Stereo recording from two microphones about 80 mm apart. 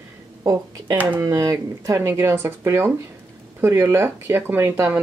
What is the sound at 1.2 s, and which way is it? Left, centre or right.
Speech, right.